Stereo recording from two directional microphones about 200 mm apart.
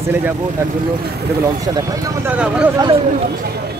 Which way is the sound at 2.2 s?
5° right (ahead or behind).